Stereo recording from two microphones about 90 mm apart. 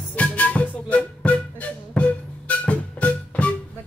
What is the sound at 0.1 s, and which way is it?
Music, 15° left (ahead or behind).